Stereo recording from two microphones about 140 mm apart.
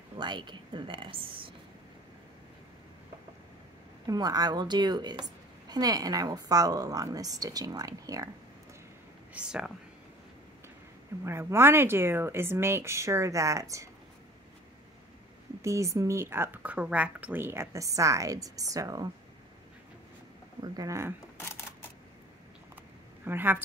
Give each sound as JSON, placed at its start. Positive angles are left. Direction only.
{"t": 0.2, "sound": "a woman's voice", "side_deg": -30}
{"t": 4.1, "sound": "a woman's voice", "side_deg": -25}
{"t": 9.3, "sound": "speech", "side_deg": -5}
{"t": 11.2, "sound": "speech", "side_deg": -20}
{"t": 15.6, "sound": "a woman's voice", "side_deg": -20}
{"t": 20.6, "sound": "a woman's voice", "side_deg": -25}
{"t": 21.4, "sound": "camera", "side_deg": 20}
{"t": 23.2, "sound": "speech", "side_deg": -15}